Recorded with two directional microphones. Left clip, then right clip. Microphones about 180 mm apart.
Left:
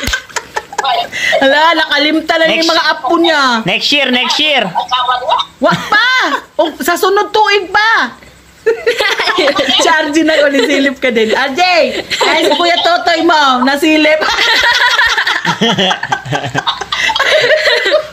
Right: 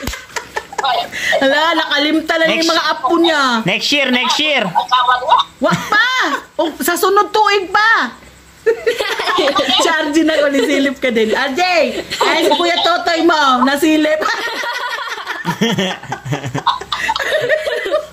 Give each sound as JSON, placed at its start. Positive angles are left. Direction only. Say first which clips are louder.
{"t": 1.2, "sound": "speech", "louder": "left 5 dB", "side_deg": -15}
{"t": 3.6, "sound": "speech", "louder": "left 3 dB", "side_deg": -50}
{"t": 4.7, "sound": "speech", "louder": "even", "side_deg": 10}
{"t": 5.9, "sound": "speech", "louder": "left 3 dB", "side_deg": -20}
{"t": 8.6, "sound": "speech", "louder": "left 4 dB", "side_deg": -10}
{"t": 9.8, "sound": "speech", "louder": "left 4 dB", "side_deg": -20}
{"t": 10.3, "sound": "speech", "louder": "left 4 dB", "side_deg": -10}
{"t": 12.6, "sound": "speech", "louder": "left 4 dB", "side_deg": -20}
{"t": 14.4, "sound": "a sound", "louder": "left 11 dB", "side_deg": -5}
{"t": 15.6, "sound": "speech", "louder": "left 5 dB", "side_deg": -45}
{"t": 16.1, "sound": "chuckle", "louder": "left 8 dB", "side_deg": -10}